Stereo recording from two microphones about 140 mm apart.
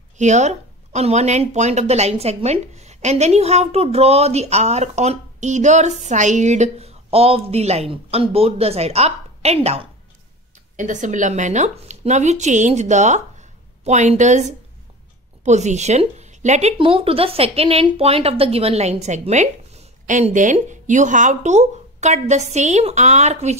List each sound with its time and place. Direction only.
0.2 s speech: 55° right (ahead or behind)
10.8 s a woman's voice: 60° right (ahead or behind)
16.7 s speech: 40° right (ahead or behind)